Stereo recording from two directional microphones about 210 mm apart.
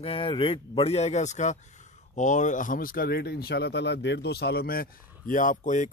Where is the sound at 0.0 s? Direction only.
25° left (ahead or behind).